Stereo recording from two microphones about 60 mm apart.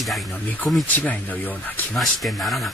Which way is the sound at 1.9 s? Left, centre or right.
Centre.